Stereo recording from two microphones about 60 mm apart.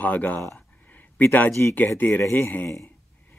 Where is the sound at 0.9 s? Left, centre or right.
Left.